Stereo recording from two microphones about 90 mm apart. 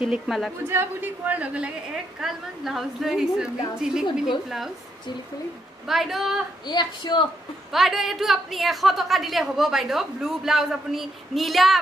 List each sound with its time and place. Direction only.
0.1 s a woman's voice: centre (ahead or behind)
0.7 s a woman's voice: 25° right (ahead or behind)
2.1 s a woman's voice: 5° right (ahead or behind)
5.9 s a woman's voice: 5° right (ahead or behind)
6.6 s a woman's voice: 55° left (ahead or behind)
7.7 s a woman's voice: centre (ahead or behind)